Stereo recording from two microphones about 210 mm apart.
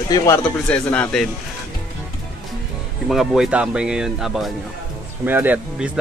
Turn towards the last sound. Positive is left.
turn(degrees=-10)  # may be behind; listen again after turning